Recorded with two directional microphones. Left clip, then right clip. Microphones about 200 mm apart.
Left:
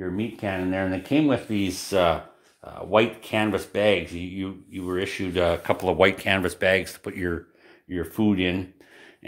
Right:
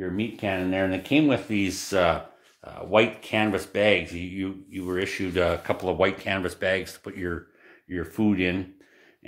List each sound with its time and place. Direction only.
0.0 s speech: 15° left (ahead or behind)